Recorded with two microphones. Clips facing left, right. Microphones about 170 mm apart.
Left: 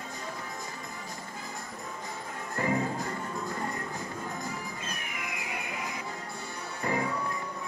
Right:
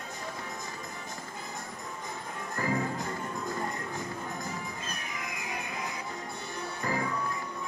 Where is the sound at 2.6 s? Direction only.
25° left (ahead or behind).